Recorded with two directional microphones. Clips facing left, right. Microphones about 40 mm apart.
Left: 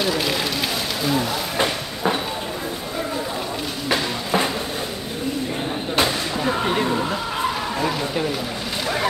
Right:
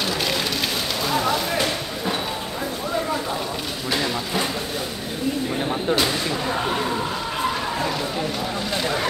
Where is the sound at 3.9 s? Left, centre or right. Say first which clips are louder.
Left 2 dB; centre.